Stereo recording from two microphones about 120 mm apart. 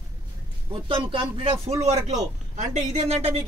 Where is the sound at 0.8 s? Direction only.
45° right (ahead or behind).